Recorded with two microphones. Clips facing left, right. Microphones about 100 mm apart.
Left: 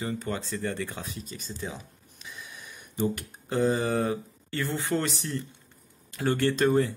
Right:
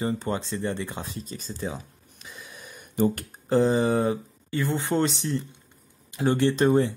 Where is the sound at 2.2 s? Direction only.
40° right (ahead or behind).